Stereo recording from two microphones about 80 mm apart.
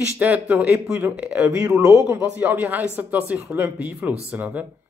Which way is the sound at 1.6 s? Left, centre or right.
Right.